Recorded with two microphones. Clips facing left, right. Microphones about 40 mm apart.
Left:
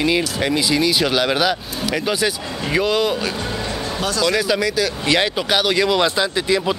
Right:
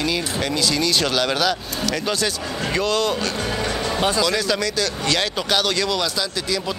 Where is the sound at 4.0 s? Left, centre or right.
Right.